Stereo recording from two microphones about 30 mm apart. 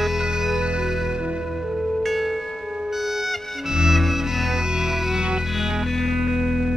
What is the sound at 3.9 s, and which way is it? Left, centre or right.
Music, centre.